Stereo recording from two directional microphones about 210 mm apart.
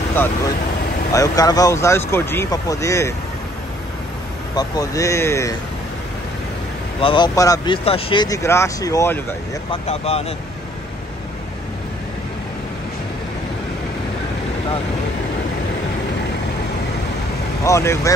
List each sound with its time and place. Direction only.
1.1 s speech: 15° left (ahead or behind)
4.6 s speech: 15° left (ahead or behind)
7.0 s speech: 25° left (ahead or behind)
9.7 s speech: 30° left (ahead or behind)
17.6 s speech: 15° left (ahead or behind)